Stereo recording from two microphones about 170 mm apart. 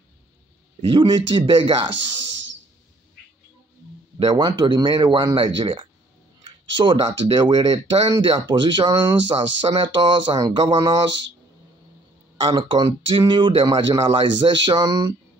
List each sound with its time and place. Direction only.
0.8 s speech: 30° right (ahead or behind)
1.9 s speech: 90° right
4.2 s speech: 25° right (ahead or behind)
11.1 s speech: 90° right
12.4 s speech: 30° right (ahead or behind)